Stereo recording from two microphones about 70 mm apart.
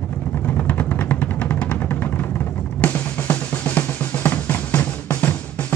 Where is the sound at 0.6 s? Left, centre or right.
Left.